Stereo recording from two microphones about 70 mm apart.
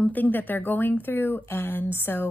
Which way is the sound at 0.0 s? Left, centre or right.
Left.